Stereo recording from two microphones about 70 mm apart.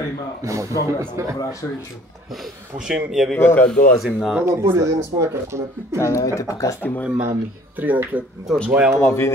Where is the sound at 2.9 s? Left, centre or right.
Centre.